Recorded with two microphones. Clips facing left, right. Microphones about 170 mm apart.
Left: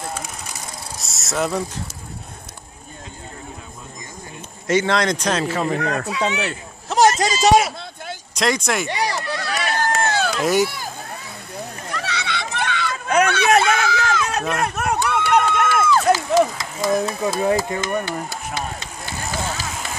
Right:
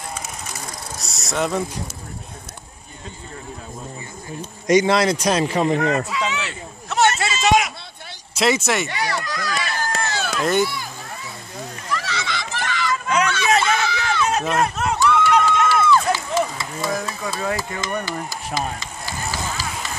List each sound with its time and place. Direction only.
0.9 s vehicle: centre (ahead or behind)
4.6 s a man's voice: 10° right (ahead or behind)
6.0 s speech: 60° left (ahead or behind)
6.9 s a sound: 35° left (ahead or behind)
8.4 s speech: 5° right (ahead or behind)
8.8 s a sound: 30° left (ahead or behind)
9.5 s run: 70° left (ahead or behind)
10.4 s speech: 5° left (ahead or behind)
11.9 s children playing: 65° left (ahead or behind); by 14.4 s 45° left (ahead or behind)
14.6 s run: 60° left (ahead or behind)
16.9 s a sound: 25° left (ahead or behind)
18.0 s speech: 65° left (ahead or behind)
19.3 s run: 55° left (ahead or behind)